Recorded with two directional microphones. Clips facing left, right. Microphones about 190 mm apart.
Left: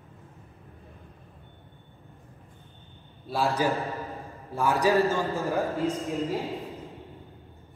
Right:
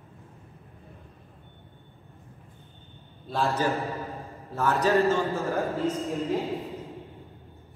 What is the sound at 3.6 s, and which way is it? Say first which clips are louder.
A man's voice: even; 10° left (ahead or behind).